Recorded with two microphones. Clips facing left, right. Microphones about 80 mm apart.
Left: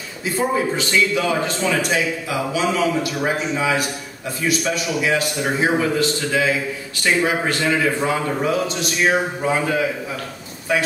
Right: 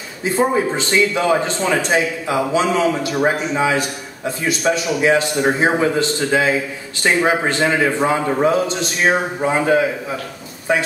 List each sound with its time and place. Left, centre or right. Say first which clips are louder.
0.2 s a man's voice: right 4 dB; right